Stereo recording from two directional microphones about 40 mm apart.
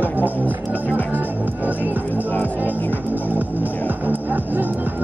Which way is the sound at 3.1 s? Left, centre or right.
Right.